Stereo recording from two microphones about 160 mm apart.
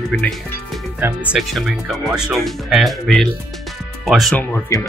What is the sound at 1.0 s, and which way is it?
Speech, 15° right (ahead or behind).